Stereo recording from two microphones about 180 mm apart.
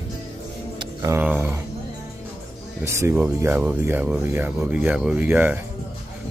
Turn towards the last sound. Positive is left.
turn(degrees=-10)  # may be behind; listen again after turning